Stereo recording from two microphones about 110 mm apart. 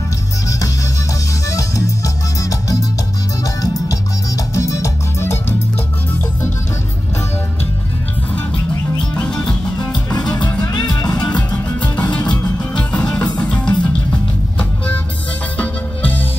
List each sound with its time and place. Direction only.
1.5 s music: 30° left (ahead or behind)
3.6 s music: 30° left (ahead or behind)
8.9 s music: 10° left (ahead or behind)
10.6 s music: 30° left (ahead or behind)
11.1 s music: 10° left (ahead or behind)